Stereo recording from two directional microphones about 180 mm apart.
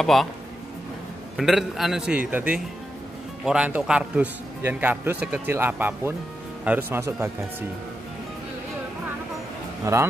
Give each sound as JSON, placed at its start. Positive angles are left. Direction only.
{"t": 0.0, "sound": "a man's voice", "side_deg": 0}
{"t": 1.3, "sound": "a man's voice", "side_deg": 0}
{"t": 9.9, "sound": "a man's voice", "side_deg": -15}